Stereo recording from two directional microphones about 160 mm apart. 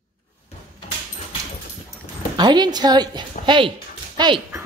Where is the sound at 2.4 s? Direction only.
25° right (ahead or behind).